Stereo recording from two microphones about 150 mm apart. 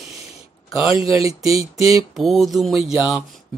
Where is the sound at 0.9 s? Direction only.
20° right (ahead or behind).